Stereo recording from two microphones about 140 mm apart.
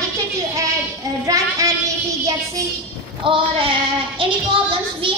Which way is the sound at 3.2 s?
40° right (ahead or behind).